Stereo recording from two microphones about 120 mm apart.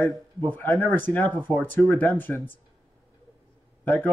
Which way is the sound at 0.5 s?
15° left (ahead or behind).